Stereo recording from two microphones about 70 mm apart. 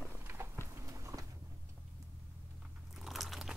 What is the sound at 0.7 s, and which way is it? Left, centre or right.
Walk, right.